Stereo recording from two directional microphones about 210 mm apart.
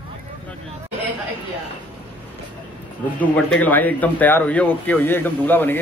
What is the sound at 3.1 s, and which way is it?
Speech, 5° left (ahead or behind).